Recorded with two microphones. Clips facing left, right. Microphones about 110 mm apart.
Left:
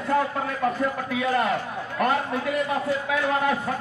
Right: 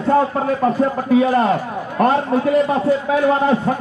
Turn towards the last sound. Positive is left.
turn(degrees=-30)  # may be behind; listen again after turning